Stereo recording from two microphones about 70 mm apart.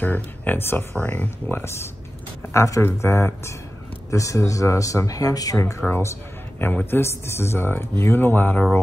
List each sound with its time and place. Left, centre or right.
0.0 s speech: left
2.5 s speech: left
4.1 s speech: left
5.8 s speech: left
7.0 s speech: left